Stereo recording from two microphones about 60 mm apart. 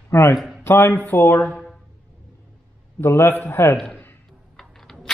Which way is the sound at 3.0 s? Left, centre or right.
Left.